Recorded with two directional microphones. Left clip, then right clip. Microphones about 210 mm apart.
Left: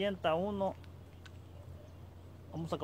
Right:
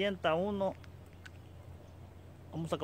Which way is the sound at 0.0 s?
25° right (ahead or behind).